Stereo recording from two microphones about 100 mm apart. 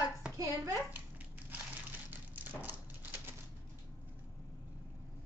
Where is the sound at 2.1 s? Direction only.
20° right (ahead or behind).